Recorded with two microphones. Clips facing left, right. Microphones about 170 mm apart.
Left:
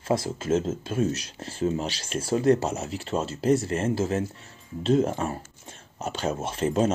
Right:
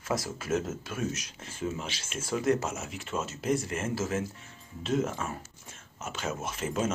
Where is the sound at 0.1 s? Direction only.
25° left (ahead or behind).